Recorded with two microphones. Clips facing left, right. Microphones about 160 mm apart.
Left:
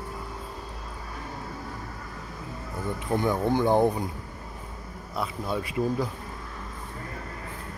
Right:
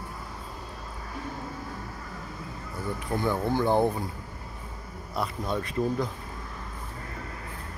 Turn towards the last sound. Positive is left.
turn(degrees=10)  # may be behind; listen again after turning